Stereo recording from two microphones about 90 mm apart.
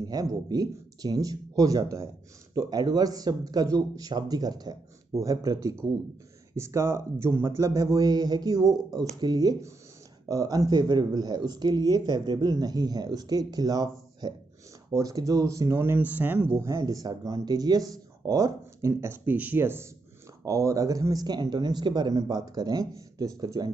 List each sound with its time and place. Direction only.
0.0 s a man's voice: 45° right (ahead or behind); by 16.5 s 20° right (ahead or behind)
16.6 s a man's voice: 40° right (ahead or behind)
20.4 s speech: 40° right (ahead or behind)